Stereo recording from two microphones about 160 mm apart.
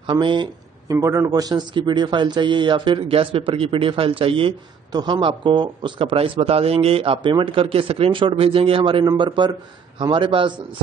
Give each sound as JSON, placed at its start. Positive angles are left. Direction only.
{"t": 0.0, "sound": "speech", "side_deg": -30}
{"t": 0.9, "sound": "a man's voice", "side_deg": -15}